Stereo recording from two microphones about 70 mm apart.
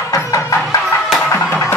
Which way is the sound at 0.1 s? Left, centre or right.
Left.